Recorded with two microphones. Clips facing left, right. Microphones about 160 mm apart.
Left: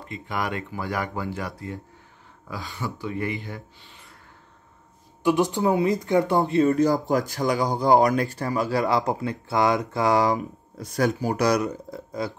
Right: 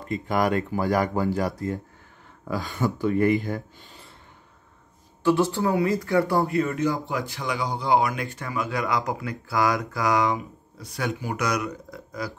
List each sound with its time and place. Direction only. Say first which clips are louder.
0.0 s speech: right 6 dB; 45° right (ahead or behind)
5.2 s speech: even; 15° left (ahead or behind)
6.7 s speech: left 5 dB; 40° left (ahead or behind)